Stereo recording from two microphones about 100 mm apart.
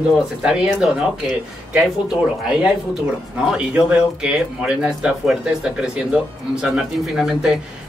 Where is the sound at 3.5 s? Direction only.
10° right (ahead or behind).